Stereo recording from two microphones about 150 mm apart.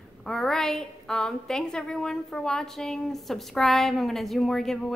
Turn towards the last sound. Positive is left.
turn(degrees=5)  # may be behind; listen again after turning